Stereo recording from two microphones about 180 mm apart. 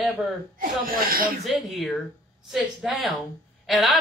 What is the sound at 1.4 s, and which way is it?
A woman's voice, centre (ahead or behind).